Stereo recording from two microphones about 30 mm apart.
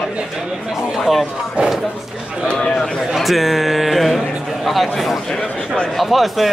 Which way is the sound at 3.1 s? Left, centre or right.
Centre.